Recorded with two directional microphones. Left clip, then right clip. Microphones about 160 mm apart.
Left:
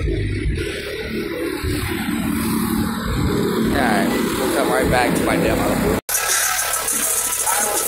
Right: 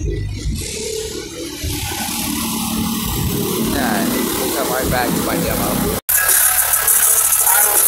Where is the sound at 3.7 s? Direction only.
10° left (ahead or behind).